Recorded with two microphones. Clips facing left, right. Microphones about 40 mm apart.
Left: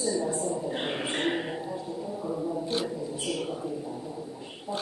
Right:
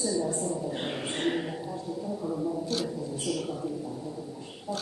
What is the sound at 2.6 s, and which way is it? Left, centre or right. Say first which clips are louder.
Speech: left 1 dB; left.